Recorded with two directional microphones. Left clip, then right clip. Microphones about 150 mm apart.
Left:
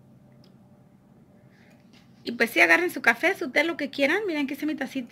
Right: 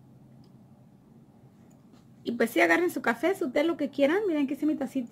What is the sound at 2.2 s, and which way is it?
Speech, 25° right (ahead or behind).